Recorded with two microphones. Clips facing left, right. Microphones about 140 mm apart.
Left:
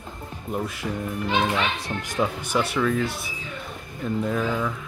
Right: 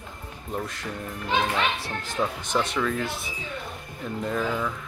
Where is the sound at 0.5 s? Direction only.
5° left (ahead or behind).